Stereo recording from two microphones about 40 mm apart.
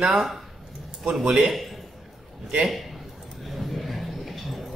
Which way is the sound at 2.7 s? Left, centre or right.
Centre.